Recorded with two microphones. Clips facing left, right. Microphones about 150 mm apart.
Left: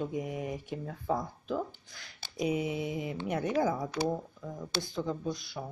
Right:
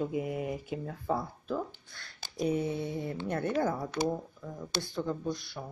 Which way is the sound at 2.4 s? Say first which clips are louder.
Right 1 dB; 15° left (ahead or behind).